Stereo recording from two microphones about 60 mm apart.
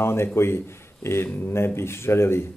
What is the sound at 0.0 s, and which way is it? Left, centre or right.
Speech, left.